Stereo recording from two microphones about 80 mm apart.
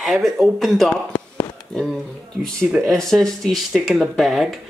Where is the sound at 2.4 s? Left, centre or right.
Centre.